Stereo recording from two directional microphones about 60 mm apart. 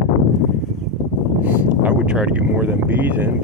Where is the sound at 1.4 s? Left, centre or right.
Right.